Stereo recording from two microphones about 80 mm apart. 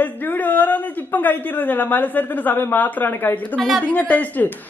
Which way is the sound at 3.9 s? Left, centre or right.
Left.